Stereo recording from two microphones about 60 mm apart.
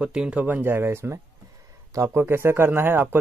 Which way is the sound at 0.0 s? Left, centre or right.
Centre.